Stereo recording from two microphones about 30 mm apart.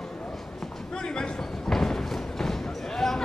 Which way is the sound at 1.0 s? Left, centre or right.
Left.